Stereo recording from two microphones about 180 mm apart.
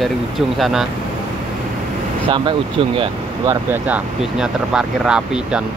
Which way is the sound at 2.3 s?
30° right (ahead or behind).